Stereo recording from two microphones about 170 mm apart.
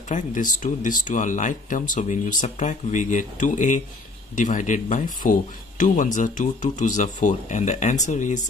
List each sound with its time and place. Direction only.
0.1 s speech: 50° left (ahead or behind)